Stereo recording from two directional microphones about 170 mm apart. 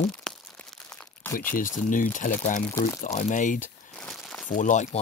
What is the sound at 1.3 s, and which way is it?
Speech, 55° left (ahead or behind).